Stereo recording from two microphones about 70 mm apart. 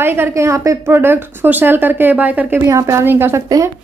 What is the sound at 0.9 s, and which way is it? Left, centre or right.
Speech, right.